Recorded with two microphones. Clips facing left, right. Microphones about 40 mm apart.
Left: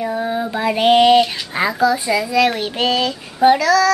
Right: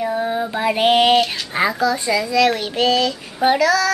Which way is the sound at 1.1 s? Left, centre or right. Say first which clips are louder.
Left 3 dB; centre.